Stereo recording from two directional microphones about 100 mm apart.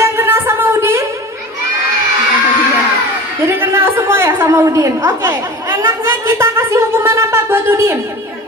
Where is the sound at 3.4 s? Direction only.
25° right (ahead or behind).